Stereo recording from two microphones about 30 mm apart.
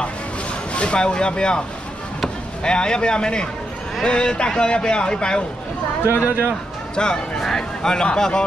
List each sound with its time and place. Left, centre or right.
0.7 s a man's voice: left
6.2 s speech: right
7.0 s speech: left
7.3 s speech: centre